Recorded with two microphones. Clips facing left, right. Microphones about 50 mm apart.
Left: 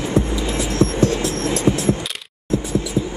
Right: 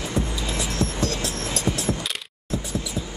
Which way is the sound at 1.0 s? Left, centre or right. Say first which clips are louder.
Left 8 dB; left.